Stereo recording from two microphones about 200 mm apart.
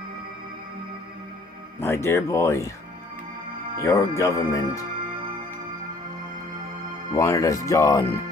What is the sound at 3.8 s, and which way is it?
Speech, 15° left (ahead or behind).